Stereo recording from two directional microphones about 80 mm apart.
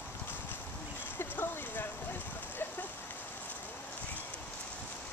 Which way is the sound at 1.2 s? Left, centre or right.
Left.